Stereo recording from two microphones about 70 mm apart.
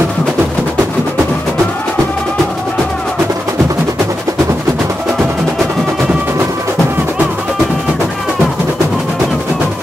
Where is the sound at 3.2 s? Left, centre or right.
Right.